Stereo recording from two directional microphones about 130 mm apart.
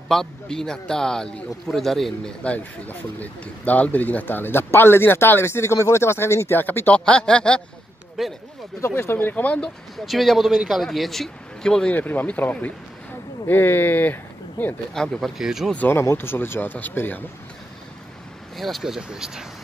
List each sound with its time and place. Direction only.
0.1 s speech: 5° left (ahead or behind)
8.8 s speech: 20° left (ahead or behind)
10.0 s speech: centre (ahead or behind)
15.1 s speech: centre (ahead or behind)
15.7 s speech: 15° left (ahead or behind)
18.6 s speech: centre (ahead or behind)